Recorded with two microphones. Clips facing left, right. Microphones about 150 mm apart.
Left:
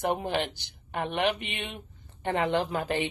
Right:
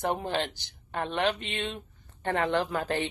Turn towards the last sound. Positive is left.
turn(degrees=20)  # may be behind; listen again after turning